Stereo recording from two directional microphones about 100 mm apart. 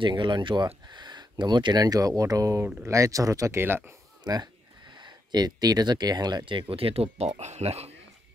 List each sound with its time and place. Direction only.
0.0 s speech: 50° right (ahead or behind); by 3.9 s 25° right (ahead or behind)
4.2 s speech: 45° right (ahead or behind); by 7.9 s 90° right